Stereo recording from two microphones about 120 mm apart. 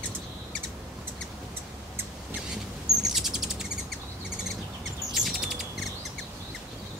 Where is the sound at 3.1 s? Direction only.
5° right (ahead or behind).